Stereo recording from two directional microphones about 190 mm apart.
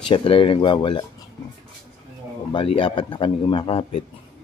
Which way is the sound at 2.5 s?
30° left (ahead or behind).